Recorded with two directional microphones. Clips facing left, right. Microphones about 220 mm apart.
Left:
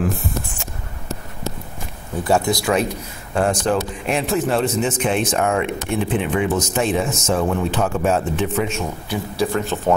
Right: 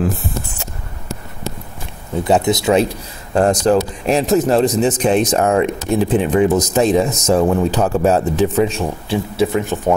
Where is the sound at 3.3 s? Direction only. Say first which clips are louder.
Right 5 dB; 40° right (ahead or behind).